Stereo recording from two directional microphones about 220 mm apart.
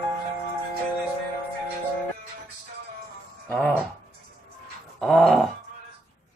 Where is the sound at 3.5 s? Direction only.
5° left (ahead or behind).